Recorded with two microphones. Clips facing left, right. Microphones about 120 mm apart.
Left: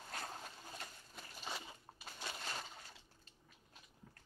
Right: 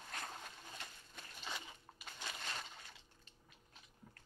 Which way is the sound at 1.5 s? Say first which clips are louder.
Left 1 dB; 35° left (ahead or behind).